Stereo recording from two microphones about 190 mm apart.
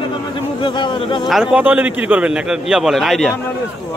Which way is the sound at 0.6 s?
25° left (ahead or behind).